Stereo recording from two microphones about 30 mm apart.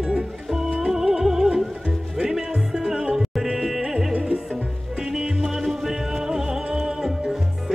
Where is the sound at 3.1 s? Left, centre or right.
Centre.